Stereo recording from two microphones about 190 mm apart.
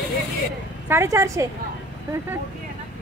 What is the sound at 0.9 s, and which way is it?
Speech, 15° right (ahead or behind).